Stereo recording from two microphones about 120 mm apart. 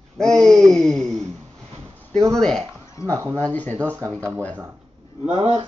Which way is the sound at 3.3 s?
10° left (ahead or behind).